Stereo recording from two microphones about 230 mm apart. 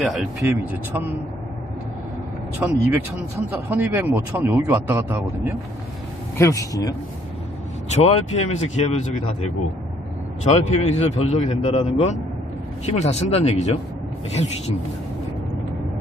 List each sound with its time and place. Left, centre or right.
2.6 s speech: centre
6.3 s speech: centre
7.9 s a man's voice: left